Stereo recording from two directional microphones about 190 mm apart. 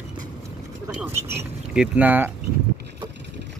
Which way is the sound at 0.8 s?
10° right (ahead or behind).